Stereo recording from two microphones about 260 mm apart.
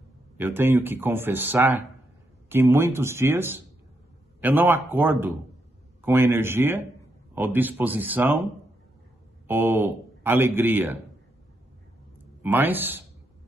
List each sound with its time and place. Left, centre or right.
0.4 s speech: centre
9.5 s speech: centre
12.4 s speech: centre